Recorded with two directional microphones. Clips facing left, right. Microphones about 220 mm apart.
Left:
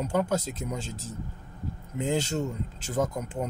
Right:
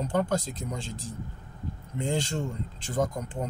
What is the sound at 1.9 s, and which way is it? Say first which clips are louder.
Speech: left 2 dB; 5° left (ahead or behind).